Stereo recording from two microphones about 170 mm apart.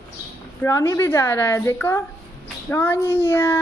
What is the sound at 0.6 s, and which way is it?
A woman's voice, 20° left (ahead or behind).